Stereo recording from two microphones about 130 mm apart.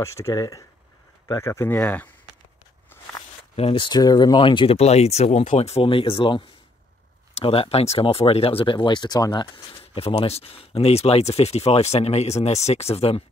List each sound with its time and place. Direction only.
0.0 s speech: 25° left (ahead or behind)
3.5 s speech: 45° left (ahead or behind)
4.7 s speech: 55° left (ahead or behind)